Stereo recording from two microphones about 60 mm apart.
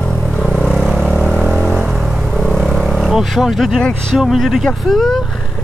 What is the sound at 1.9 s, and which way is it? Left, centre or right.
Music, centre.